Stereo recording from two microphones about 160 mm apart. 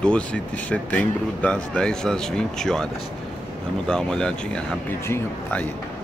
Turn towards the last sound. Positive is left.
turn(degrees=15)  # may be behind; listen again after turning